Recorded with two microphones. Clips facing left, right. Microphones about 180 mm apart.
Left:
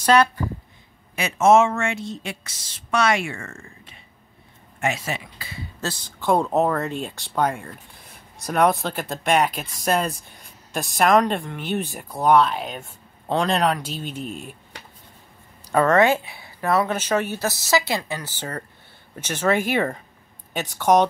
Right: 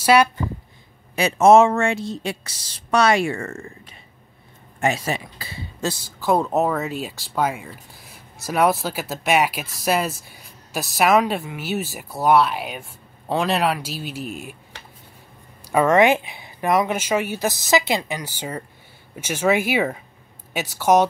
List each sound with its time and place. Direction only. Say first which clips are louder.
0.0 s speech: right 1 dB; 10° right (ahead or behind)
1.1 s speech: right 3 dB; 35° right (ahead or behind)
4.7 s speech: right 3 dB; 35° right (ahead or behind)
5.8 s speech: right 4 dB; 10° right (ahead or behind)
15.6 s speech: right 1 dB; 10° right (ahead or behind)